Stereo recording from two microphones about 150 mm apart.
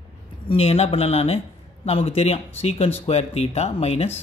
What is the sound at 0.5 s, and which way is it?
Speech, 45° left (ahead or behind).